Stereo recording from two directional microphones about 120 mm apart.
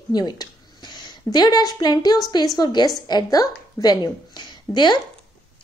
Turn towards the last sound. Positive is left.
turn(degrees=40)  # may be behind; listen again after turning